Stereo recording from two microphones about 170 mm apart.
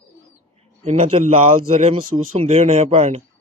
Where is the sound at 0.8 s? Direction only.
45° right (ahead or behind).